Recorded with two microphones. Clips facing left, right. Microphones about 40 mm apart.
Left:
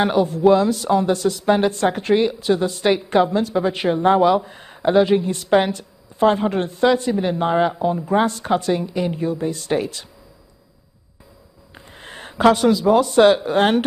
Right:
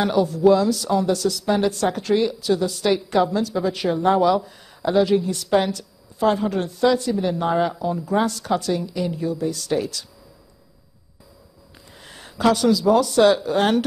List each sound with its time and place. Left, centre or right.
0.0 s speech: left
11.7 s speech: left